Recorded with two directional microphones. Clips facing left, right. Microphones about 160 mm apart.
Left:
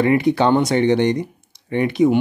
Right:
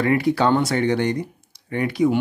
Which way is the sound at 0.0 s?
20° left (ahead or behind).